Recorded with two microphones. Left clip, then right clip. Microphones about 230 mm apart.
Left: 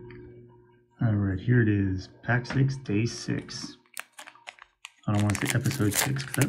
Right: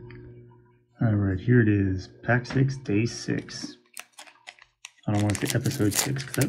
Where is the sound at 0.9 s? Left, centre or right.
Centre.